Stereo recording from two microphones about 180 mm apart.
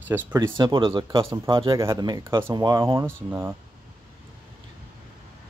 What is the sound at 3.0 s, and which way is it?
Speech, 10° right (ahead or behind).